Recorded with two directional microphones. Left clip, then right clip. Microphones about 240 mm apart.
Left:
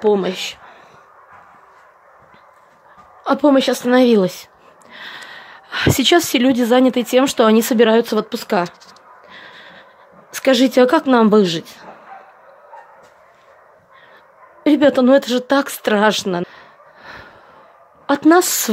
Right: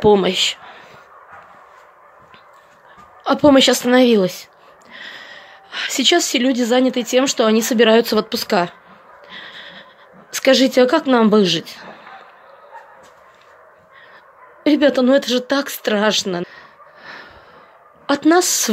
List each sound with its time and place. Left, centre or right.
0.0 s speech: centre
3.3 s speech: centre
9.3 s dog: centre
10.3 s speech: centre
14.6 s speech: centre